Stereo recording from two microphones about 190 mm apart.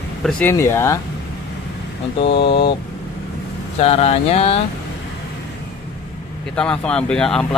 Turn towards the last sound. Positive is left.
turn(degrees=5)  # may be behind; listen again after turning